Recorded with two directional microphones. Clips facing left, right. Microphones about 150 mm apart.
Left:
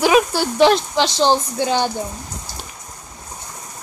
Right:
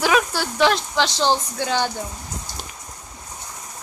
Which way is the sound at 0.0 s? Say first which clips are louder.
Left 5 dB; 20° left (ahead or behind).